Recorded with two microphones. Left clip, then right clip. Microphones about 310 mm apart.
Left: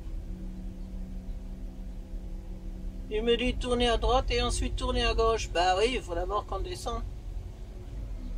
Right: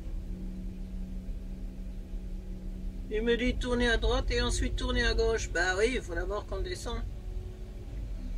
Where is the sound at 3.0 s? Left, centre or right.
Centre.